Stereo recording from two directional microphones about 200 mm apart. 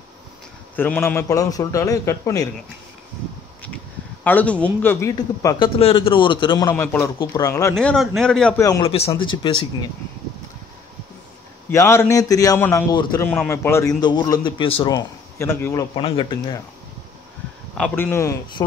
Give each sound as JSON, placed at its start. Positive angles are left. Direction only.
{"t": 0.7, "sound": "a man's voice", "side_deg": 10}
{"t": 3.6, "sound": "a sound", "side_deg": 10}
{"t": 5.1, "sound": "a man's voice", "side_deg": 20}
{"t": 6.7, "sound": "a man's voice", "side_deg": 10}
{"t": 7.7, "sound": "a man's voice", "side_deg": 0}
{"t": 8.5, "sound": "a man's voice", "side_deg": 15}
{"t": 8.8, "sound": "a man's voice", "side_deg": 30}
{"t": 11.7, "sound": "a man's voice", "side_deg": 15}
{"t": 17.7, "sound": "a man's voice", "side_deg": 10}